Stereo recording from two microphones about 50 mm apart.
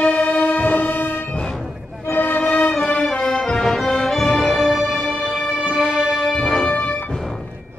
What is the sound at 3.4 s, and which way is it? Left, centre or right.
Music, centre.